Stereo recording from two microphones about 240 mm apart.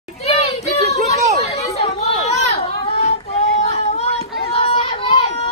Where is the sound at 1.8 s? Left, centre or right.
Left.